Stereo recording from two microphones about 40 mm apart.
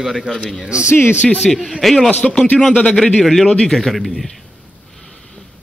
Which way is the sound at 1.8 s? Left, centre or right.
Centre.